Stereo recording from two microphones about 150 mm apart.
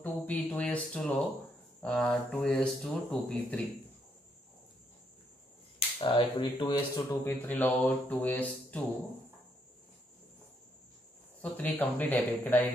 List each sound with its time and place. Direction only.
0.0 s speech: 10° left (ahead or behind)
5.8 s speech: 35° left (ahead or behind)
7.1 s speech: 15° left (ahead or behind)
11.5 s speech: 10° left (ahead or behind)